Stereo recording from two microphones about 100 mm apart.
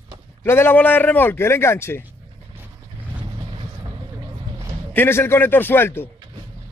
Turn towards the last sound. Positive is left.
turn(degrees=25)  # may be behind; listen again after turning